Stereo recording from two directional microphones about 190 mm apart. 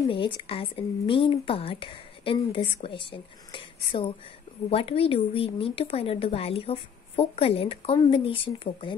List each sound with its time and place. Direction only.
0.1 s speech: 25° left (ahead or behind)